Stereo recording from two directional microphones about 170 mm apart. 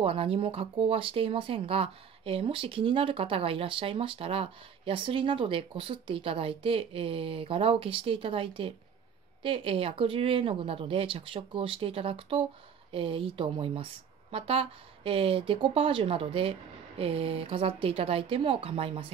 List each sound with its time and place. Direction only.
0.0 s speech: 35° right (ahead or behind)